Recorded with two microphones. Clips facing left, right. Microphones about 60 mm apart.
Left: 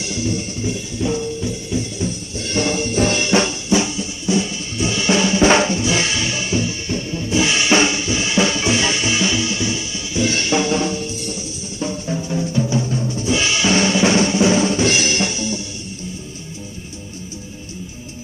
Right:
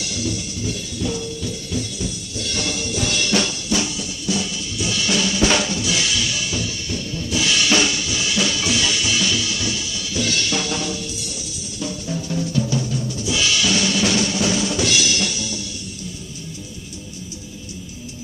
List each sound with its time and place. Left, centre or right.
0.0 s music: left
11.8 s drum: left